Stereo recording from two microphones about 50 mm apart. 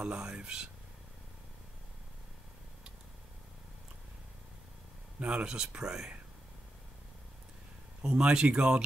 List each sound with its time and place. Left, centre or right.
0.0 s speech: centre
5.2 s speech: right
8.0 s speech: centre